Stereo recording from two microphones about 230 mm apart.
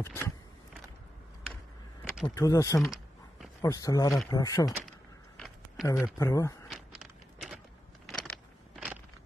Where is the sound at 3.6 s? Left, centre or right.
Centre.